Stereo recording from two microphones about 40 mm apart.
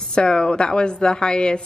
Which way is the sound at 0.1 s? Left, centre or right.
Left.